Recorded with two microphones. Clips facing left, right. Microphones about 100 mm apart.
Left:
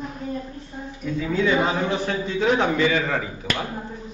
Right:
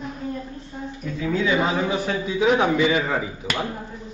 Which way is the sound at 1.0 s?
Centre (ahead or behind).